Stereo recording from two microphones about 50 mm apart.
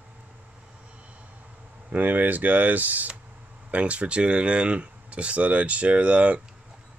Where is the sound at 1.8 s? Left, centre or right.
Right.